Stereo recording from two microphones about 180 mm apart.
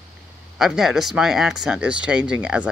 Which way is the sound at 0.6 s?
5° right (ahead or behind).